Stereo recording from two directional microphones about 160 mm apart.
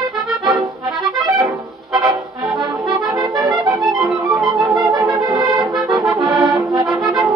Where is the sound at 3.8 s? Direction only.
Centre (ahead or behind).